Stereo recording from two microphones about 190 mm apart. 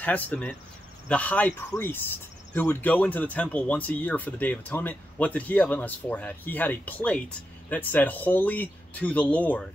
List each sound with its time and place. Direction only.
0.0 s speech: 10° left (ahead or behind)